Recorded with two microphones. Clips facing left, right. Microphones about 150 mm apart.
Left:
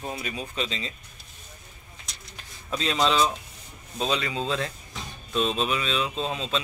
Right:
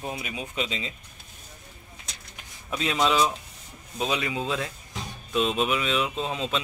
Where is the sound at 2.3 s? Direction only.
10° right (ahead or behind).